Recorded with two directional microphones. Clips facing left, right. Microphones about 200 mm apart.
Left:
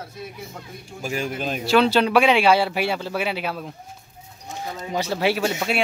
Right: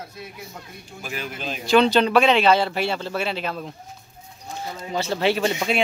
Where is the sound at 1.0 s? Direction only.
45° left (ahead or behind).